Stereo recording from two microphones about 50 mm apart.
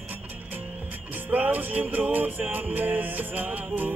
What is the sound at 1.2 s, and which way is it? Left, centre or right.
Music, right.